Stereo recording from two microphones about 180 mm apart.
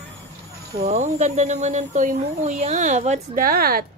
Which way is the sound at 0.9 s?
40° right (ahead or behind).